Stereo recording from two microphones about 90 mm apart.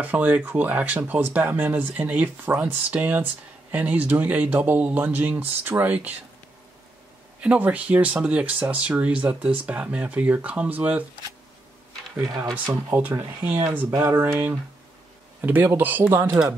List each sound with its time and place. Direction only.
0.0 s speech: 15° right (ahead or behind)
7.3 s speech: 15° right (ahead or behind)
12.9 s speech: 25° right (ahead or behind)
13.8 s speech: 30° right (ahead or behind)
15.4 s speech: 20° right (ahead or behind)